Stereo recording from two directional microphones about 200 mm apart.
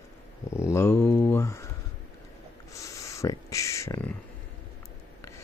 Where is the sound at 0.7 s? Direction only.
10° left (ahead or behind).